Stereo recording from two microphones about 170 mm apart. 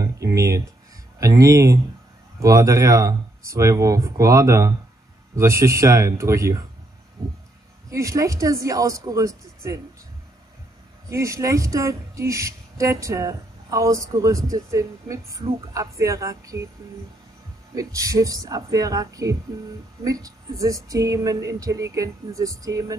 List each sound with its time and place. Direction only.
0.0 s a sound: 20° right (ahead or behind)
1.2 s speech: 20° right (ahead or behind)
7.9 s speech: 20° right (ahead or behind)
11.1 s speech: 15° right (ahead or behind)
17.7 s speech: 20° right (ahead or behind)